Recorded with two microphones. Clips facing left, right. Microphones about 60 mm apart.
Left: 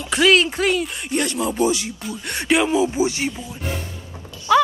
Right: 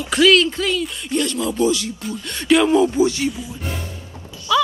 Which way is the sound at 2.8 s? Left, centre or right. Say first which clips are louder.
Right 3 dB; left.